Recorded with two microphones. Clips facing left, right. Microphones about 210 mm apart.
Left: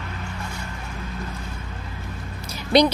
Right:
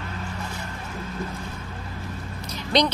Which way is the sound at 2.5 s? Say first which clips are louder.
Left 5 dB; 10° left (ahead or behind).